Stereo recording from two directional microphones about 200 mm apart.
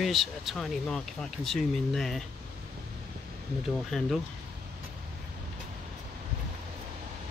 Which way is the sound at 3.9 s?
Centre (ahead or behind).